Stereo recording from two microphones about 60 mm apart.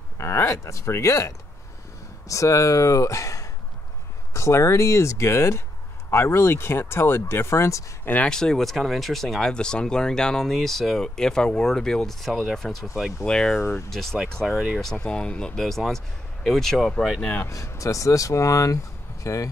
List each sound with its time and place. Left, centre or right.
0.2 s speech: left
8.0 s speech: left
8.3 s speech: centre
13.2 s speech: centre
17.5 s speech: left